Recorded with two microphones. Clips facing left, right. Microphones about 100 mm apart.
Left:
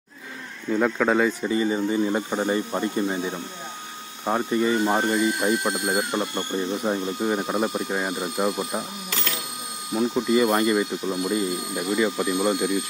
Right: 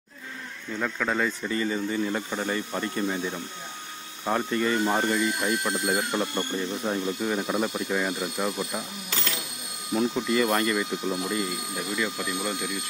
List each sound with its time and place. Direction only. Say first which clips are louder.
0.7 s speech: left 8 dB; 20° left (ahead or behind)
9.9 s speech: left 3 dB; 15° left (ahead or behind)